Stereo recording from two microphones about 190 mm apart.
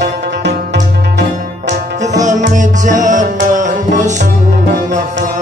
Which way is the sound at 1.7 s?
40° right (ahead or behind).